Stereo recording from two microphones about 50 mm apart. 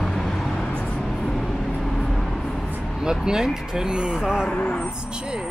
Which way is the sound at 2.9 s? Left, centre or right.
Centre.